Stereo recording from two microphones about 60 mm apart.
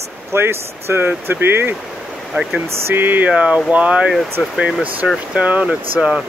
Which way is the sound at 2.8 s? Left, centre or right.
Right.